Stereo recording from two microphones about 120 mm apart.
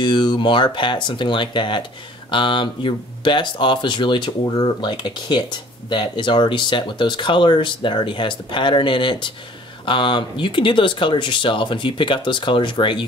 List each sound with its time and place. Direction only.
0.0 s speech: 40° left (ahead or behind)